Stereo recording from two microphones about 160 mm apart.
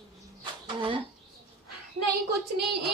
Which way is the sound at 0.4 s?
30° right (ahead or behind).